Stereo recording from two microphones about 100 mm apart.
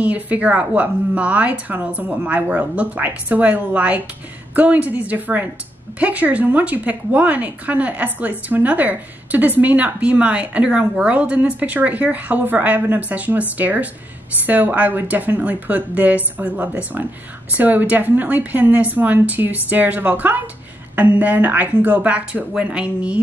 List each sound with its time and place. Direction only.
0.0 s a woman's voice: 15° right (ahead or behind)